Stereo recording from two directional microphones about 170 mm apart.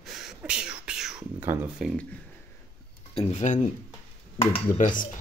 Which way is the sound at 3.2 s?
40° left (ahead or behind).